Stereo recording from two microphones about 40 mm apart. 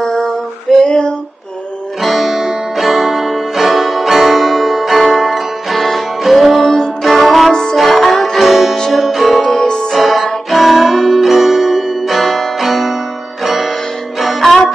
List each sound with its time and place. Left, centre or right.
0.0 s female singing: centre
0.7 s a sound: centre
2.0 s music: centre
9.5 s music: centre
9.9 s music: centre